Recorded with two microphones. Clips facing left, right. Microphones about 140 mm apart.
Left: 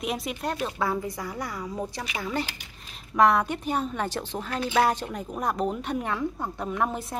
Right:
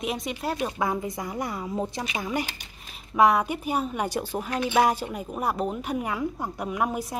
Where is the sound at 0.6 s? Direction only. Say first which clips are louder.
Right 1 dB; 20° right (ahead or behind).